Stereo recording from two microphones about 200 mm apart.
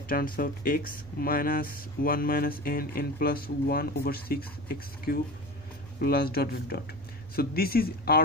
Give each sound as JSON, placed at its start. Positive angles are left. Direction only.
{"t": 0.1, "sound": "speech", "side_deg": 45}